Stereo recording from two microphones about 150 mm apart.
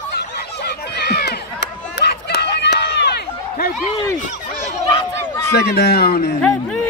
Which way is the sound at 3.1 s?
85° left.